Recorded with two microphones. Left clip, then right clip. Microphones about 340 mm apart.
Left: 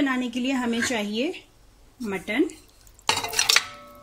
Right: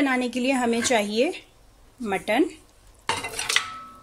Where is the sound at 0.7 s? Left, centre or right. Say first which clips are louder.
Right 4 dB; right.